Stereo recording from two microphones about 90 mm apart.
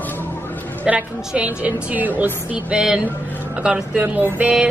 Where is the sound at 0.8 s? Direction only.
15° right (ahead or behind).